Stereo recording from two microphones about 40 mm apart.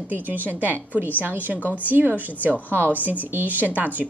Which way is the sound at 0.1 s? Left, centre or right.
Right.